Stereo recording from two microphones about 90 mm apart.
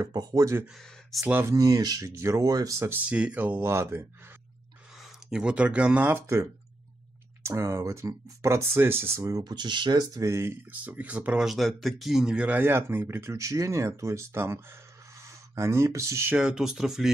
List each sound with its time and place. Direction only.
0.0 s speech: 45° right (ahead or behind)
3.1 s speech: 15° right (ahead or behind)
3.6 s speech: 30° right (ahead or behind)
5.0 s speech: 10° right (ahead or behind)
7.4 s speech: 30° right (ahead or behind)
9.4 s speech: 55° right (ahead or behind)
10.1 s speech: 35° right (ahead or behind)
10.8 s speech: 15° right (ahead or behind); by 16.3 s 35° right (ahead or behind)
16.3 s speech: 10° right (ahead or behind)